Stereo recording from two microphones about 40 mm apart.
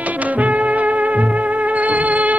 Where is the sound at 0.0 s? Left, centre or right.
Right.